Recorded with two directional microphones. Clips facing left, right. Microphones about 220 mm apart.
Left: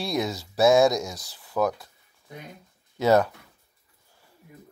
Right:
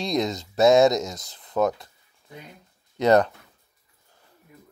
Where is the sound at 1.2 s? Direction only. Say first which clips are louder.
Right 2 dB; 20° right (ahead or behind).